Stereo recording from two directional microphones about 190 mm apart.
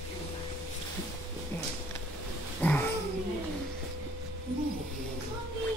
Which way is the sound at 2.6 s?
10° left (ahead or behind).